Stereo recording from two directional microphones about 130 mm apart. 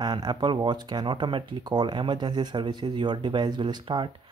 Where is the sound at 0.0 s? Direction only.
35° right (ahead or behind).